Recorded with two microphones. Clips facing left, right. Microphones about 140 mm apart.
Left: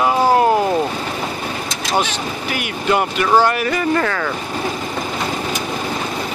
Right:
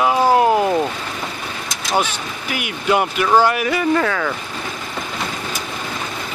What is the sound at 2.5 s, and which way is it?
Speech, 5° right (ahead or behind).